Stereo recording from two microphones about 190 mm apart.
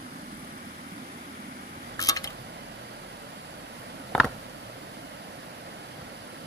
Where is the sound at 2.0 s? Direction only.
20° left (ahead or behind).